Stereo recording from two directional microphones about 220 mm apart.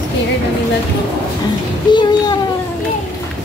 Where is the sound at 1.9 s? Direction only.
20° left (ahead or behind).